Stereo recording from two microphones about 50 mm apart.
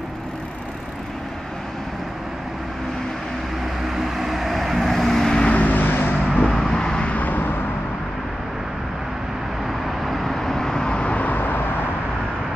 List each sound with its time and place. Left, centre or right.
3.9 s vehicle: centre
5.5 s vehicle: left
6.4 s vehicle: centre
7.1 s vehicle: left
10.0 s vehicle: centre; by 11.6 s left